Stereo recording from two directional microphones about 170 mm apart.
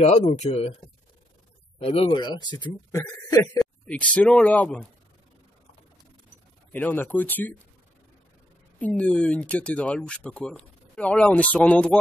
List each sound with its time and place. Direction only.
0.3 s speech: 40° left (ahead or behind)
1.8 s speech: 35° left (ahead or behind)
3.8 s speech: 5° left (ahead or behind)
6.7 s speech: 10° left (ahead or behind)
8.7 s speech: 5° left (ahead or behind)